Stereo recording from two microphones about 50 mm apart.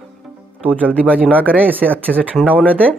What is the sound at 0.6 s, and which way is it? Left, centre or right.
Speech, right.